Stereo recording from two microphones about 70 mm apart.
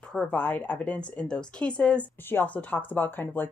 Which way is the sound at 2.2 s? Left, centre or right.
Left.